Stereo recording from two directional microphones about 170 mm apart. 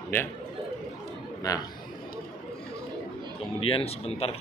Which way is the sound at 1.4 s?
20° left (ahead or behind).